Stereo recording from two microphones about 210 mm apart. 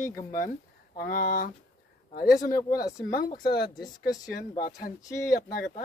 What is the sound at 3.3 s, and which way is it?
A woman's voice, 45° left (ahead or behind).